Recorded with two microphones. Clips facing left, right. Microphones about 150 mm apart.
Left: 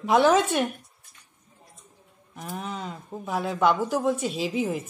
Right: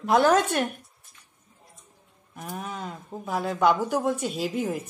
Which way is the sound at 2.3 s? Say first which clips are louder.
Left 1 dB; centre (ahead or behind).